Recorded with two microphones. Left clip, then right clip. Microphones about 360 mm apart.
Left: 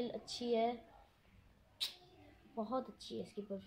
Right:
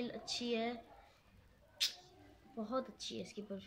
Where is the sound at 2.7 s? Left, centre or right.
Centre.